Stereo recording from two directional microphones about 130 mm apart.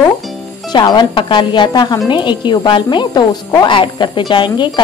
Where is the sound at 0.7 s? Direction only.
35° left (ahead or behind).